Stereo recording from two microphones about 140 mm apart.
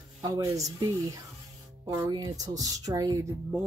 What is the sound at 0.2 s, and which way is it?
Speech, 25° right (ahead or behind).